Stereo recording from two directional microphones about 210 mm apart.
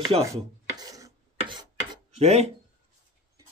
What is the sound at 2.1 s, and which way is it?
Speech, 30° right (ahead or behind).